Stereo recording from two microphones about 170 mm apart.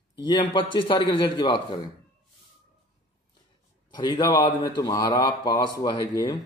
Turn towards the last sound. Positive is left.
turn(degrees=25)  # may be behind; listen again after turning